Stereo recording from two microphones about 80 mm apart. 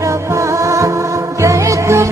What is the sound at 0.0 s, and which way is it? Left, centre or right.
Music, right.